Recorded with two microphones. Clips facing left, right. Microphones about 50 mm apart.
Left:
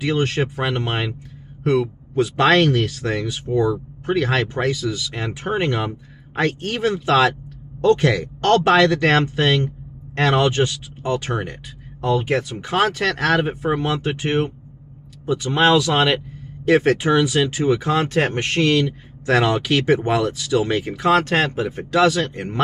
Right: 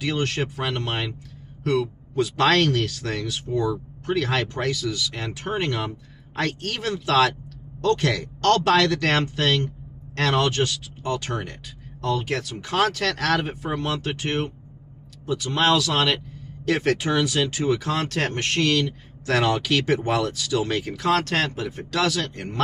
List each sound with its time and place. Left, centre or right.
0.0 s speech: centre